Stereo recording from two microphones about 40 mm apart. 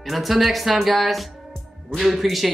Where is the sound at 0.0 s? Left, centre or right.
Centre.